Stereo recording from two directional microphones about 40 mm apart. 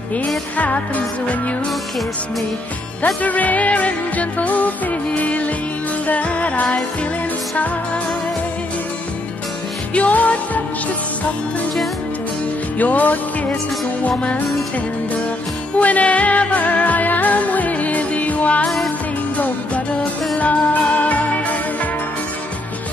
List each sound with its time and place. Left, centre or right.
0.6 s music: left
3.2 s music: left
9.9 s music: left
12.7 s music: left
15.8 s music: left